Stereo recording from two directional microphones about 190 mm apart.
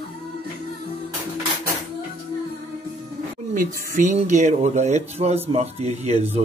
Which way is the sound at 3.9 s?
40° right (ahead or behind).